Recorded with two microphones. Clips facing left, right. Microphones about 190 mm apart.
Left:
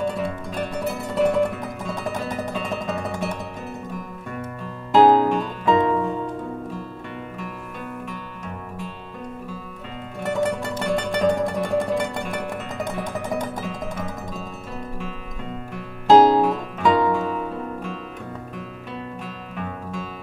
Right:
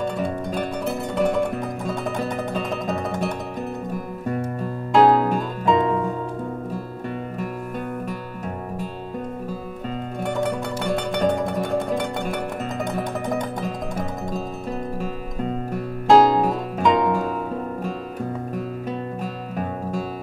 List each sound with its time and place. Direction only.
0.6 s music: centre (ahead or behind)
4.9 s music: centre (ahead or behind)
10.2 s music: centre (ahead or behind)
13.7 s music: 40° right (ahead or behind)
16.1 s music: centre (ahead or behind)
19.2 s music: 40° right (ahead or behind)